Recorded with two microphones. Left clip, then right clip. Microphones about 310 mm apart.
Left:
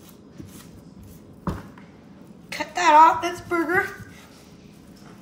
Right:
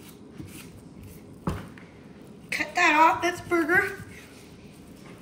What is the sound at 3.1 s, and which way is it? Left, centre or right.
Speech, left.